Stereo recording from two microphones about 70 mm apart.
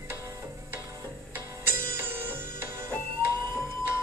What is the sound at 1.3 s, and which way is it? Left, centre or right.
Music, right.